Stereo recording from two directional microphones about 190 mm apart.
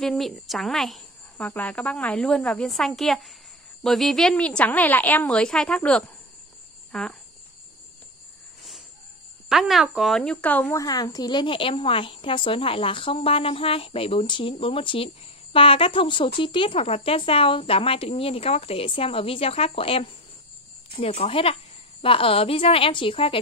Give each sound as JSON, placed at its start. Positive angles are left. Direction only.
{"t": 0.0, "sound": "speech", "side_deg": 0}
{"t": 6.9, "sound": "cricket", "side_deg": 5}
{"t": 9.5, "sound": "speech", "side_deg": 0}